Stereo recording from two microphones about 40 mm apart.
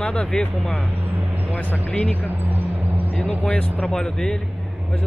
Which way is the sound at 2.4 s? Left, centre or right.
Right.